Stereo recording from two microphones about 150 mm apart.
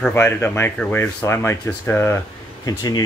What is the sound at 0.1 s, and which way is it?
Speech, 15° left (ahead or behind).